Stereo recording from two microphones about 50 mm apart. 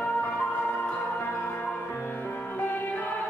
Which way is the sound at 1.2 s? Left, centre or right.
Left.